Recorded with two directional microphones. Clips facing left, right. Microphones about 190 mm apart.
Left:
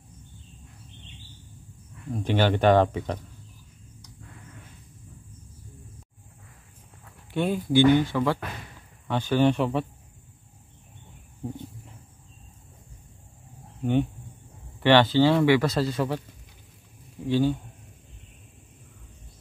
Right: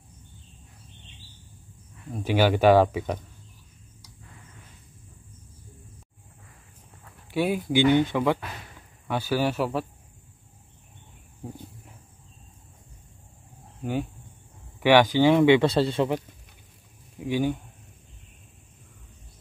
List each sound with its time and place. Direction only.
2.2 s speech: 10° right (ahead or behind)
7.3 s speech: 10° right (ahead or behind)
14.8 s speech: 10° right (ahead or behind)
17.3 s speech: 15° right (ahead or behind)